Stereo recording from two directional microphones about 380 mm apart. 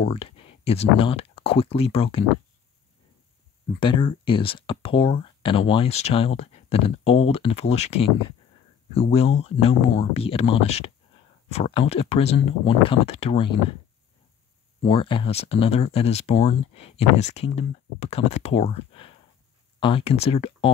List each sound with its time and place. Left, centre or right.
0.0 s speech: centre
3.8 s speech: centre
14.8 s speech: centre